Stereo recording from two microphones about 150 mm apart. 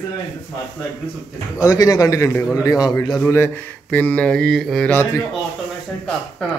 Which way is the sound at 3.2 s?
15° left (ahead or behind).